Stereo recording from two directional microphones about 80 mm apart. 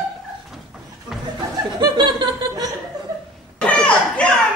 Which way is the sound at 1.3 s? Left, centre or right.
Right.